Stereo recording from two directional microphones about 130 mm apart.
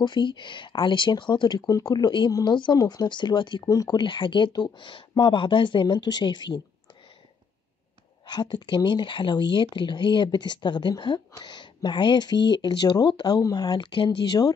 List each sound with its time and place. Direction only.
0.0 s speech: 35° left (ahead or behind)
8.3 s speech: 35° left (ahead or behind)